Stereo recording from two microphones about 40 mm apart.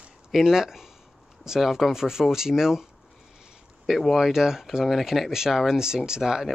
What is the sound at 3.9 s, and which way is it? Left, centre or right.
Speech, centre.